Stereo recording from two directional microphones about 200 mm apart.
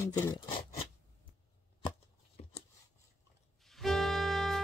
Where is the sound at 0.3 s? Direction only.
25° left (ahead or behind).